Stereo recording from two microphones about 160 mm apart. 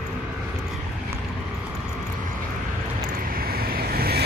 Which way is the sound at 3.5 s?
70° right (ahead or behind).